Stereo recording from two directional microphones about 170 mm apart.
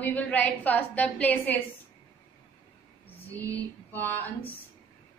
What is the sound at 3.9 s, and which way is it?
Speech, 10° left (ahead or behind).